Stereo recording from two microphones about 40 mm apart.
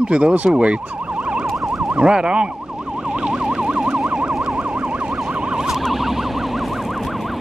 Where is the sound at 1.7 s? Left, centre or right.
Right.